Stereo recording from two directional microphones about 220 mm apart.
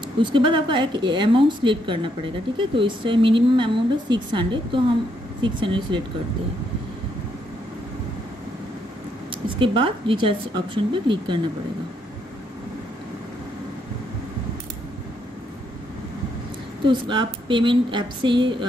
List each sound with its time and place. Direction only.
0.2 s a woman's voice: 20° right (ahead or behind)
9.6 s a woman's voice: 25° right (ahead or behind)
16.8 s a woman's voice: 20° right (ahead or behind)